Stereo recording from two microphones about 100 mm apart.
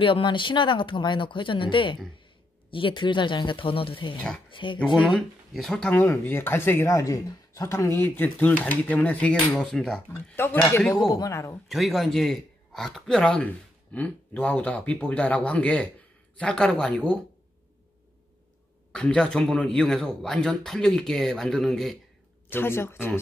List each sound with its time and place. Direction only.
0.0 s speech: 55° left (ahead or behind)
5.5 s speech: 5° left (ahead or behind)
5.9 s speech: 20° left (ahead or behind); by 10.0 s 5° left (ahead or behind)
10.1 s speech: 20° left (ahead or behind)
10.9 s speech: 40° left (ahead or behind)
11.7 s speech: centre (ahead or behind)
18.9 s speech: 10° left (ahead or behind)
22.5 s speech: 25° left (ahead or behind)